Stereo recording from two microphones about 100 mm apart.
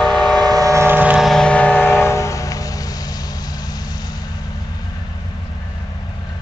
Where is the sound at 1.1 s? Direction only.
Centre (ahead or behind); by 4.3 s 40° left (ahead or behind).